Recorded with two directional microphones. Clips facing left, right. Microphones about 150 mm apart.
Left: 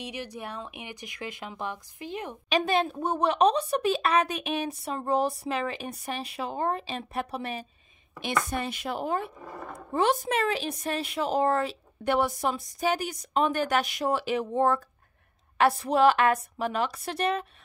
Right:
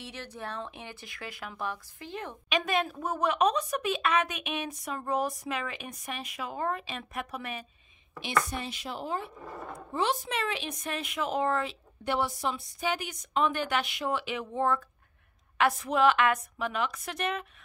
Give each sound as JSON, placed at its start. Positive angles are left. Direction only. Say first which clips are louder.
{"t": 0.0, "sound": "speech", "louder": "left 4 dB", "side_deg": 15}
{"t": 2.5, "sound": "a woman's voice", "louder": "left 4 dB", "side_deg": 30}
{"t": 8.5, "sound": "a woman's voice", "louder": "left 5 dB", "side_deg": 55}